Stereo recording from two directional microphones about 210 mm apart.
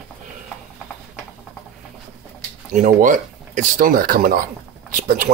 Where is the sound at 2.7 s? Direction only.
40° right (ahead or behind).